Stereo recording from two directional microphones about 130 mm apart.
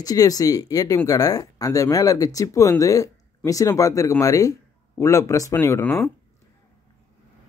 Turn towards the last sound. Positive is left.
turn(degrees=20)  # may be behind; listen again after turning